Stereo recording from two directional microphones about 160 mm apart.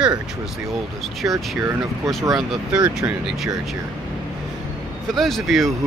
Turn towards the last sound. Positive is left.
turn(degrees=0)  # may be behind; listen again after turning